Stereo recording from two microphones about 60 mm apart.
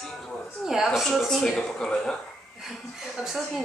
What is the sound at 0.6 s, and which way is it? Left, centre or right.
Speech, centre.